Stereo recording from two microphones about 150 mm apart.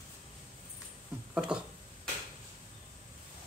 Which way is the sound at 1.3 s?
5° right (ahead or behind).